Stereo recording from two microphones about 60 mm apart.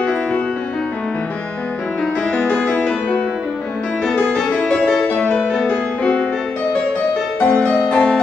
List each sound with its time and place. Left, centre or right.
2.3 s music: left
7.3 s music: left